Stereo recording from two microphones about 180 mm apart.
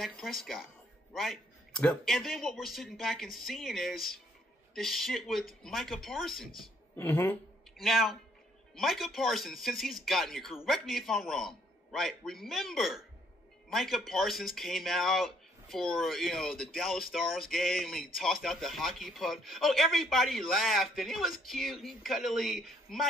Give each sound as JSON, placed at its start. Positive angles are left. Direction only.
{"t": 0.0, "sound": "speech", "side_deg": 0}
{"t": 7.0, "sound": "speech", "side_deg": 10}
{"t": 7.7, "sound": "speech", "side_deg": 0}